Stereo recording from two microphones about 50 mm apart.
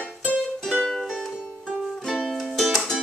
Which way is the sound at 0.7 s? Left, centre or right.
Centre.